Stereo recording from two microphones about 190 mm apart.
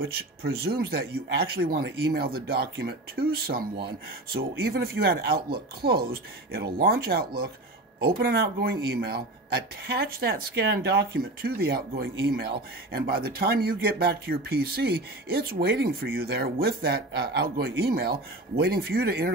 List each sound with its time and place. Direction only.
0.4 s a man's voice: 55° right (ahead or behind)